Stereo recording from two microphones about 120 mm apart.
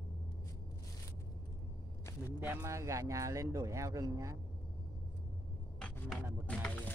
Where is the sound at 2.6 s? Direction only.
25° right (ahead or behind).